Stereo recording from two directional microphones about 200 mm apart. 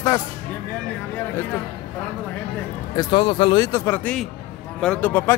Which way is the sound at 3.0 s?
25° left (ahead or behind).